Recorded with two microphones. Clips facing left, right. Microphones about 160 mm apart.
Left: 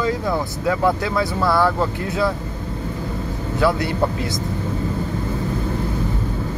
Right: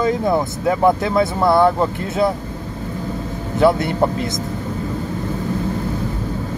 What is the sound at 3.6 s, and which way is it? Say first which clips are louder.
Speech: right 5 dB; 25° right (ahead or behind).